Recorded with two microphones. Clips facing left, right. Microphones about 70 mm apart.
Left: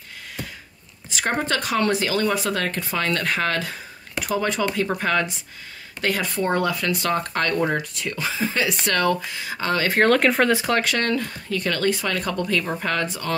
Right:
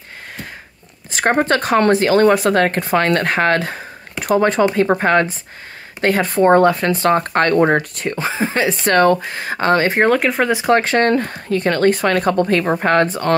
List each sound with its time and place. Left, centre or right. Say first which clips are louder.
1.1 s speech: right 8 dB; right
9.8 s speech: right 3 dB; right
10.1 s speech: right 2 dB; centre
10.5 s speech: right 6 dB; right